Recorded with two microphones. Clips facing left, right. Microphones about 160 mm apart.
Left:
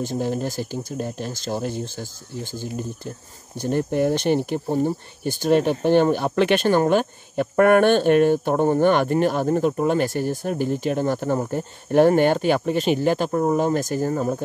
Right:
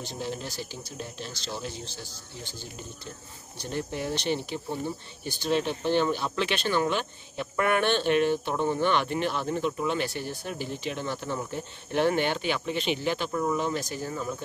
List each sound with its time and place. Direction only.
0.0 s speech: 45° left (ahead or behind)